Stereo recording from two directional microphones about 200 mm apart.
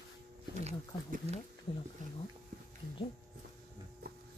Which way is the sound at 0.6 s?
35° right (ahead or behind).